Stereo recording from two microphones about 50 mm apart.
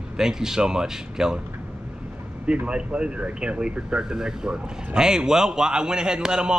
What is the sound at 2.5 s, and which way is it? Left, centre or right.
Speech, centre.